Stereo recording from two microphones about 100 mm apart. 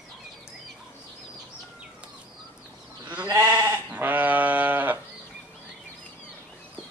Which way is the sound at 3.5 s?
25° right (ahead or behind).